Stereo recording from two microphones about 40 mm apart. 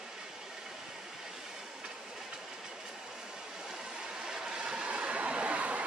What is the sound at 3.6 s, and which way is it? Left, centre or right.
Vehicle, centre.